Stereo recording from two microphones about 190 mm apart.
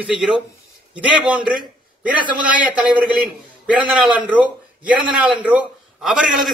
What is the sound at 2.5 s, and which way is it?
Speech, 5° right (ahead or behind).